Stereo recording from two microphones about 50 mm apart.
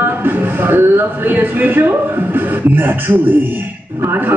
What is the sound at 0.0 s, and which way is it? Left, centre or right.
A woman's voice, right.